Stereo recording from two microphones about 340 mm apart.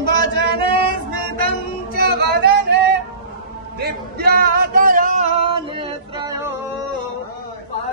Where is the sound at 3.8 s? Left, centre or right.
Right.